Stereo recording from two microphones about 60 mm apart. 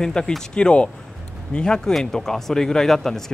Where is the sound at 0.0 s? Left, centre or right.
Centre.